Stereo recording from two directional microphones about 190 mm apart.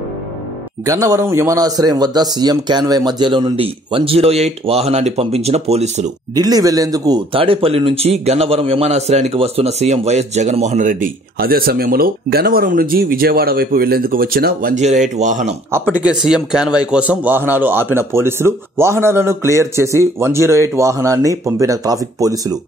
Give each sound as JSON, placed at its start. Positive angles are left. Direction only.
{"t": 0.8, "sound": "speech", "side_deg": -15}
{"t": 6.3, "sound": "speech", "side_deg": -20}
{"t": 15.9, "sound": "a man's voice", "side_deg": -5}